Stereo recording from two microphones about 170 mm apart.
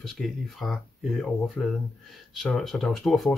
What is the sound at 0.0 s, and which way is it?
Speech, centre (ahead or behind).